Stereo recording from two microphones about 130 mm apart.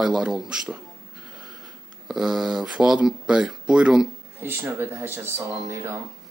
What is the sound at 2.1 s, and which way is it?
Speech, centre (ahead or behind).